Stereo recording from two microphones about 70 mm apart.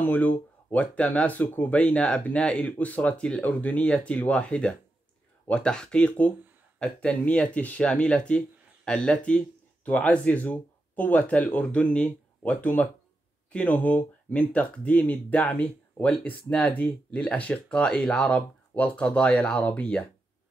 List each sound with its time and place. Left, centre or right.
0.0 s speech: left
18.2 s speech: left